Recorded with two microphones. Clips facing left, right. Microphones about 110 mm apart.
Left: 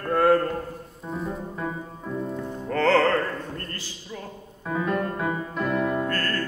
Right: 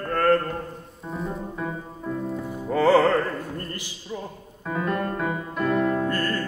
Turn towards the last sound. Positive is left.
turn(degrees=-15)  # may be behind; listen again after turning